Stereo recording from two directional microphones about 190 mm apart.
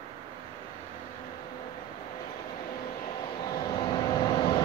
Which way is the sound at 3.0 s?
25° left (ahead or behind).